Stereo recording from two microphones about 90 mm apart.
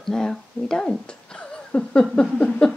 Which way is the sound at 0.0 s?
5° left (ahead or behind).